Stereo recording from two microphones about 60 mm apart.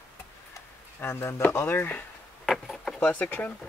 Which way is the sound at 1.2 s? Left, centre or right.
Left.